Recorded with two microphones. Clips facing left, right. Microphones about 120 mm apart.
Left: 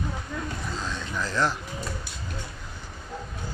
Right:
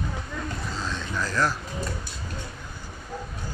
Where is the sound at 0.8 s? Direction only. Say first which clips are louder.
Right 2 dB; 15° left (ahead or behind).